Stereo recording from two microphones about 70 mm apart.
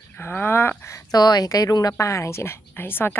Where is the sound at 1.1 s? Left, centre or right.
Left.